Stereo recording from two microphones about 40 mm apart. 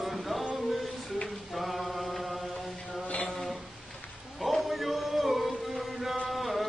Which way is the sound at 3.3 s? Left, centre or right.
Centre.